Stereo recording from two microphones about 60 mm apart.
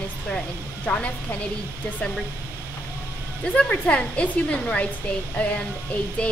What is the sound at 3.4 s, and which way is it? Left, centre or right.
A woman's voice, centre.